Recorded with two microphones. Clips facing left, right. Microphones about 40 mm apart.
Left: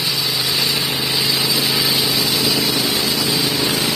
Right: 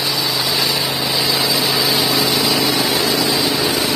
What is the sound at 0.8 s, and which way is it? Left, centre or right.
Vehicle, right.